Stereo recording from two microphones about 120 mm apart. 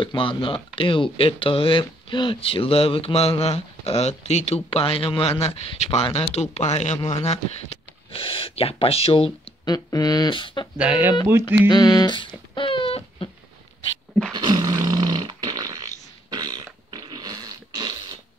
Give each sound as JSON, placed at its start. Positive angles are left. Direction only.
{"t": 0.0, "sound": "speech", "side_deg": 45}
{"t": 9.7, "sound": "a sound", "side_deg": 30}
{"t": 10.8, "sound": "speech", "side_deg": -15}
{"t": 11.4, "sound": "speech", "side_deg": 40}
{"t": 14.3, "sound": "roar", "side_deg": -35}